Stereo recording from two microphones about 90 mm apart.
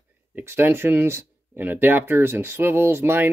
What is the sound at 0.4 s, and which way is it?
Speech, 25° right (ahead or behind).